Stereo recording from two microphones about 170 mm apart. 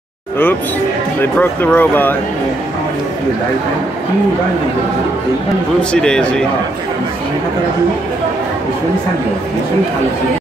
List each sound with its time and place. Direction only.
1.2 s speech: 10° left (ahead or behind)
5.8 s speech: 5° left (ahead or behind)